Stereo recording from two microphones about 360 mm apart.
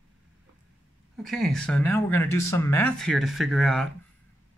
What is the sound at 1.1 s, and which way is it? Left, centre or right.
Speech, centre.